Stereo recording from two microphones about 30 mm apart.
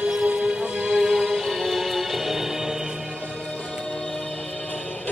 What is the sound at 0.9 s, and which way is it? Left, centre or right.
Music, centre.